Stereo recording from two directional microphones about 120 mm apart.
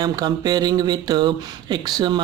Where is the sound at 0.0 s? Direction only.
35° right (ahead or behind).